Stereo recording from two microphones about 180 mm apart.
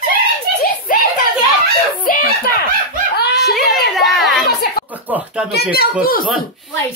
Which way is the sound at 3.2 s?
60° left (ahead or behind).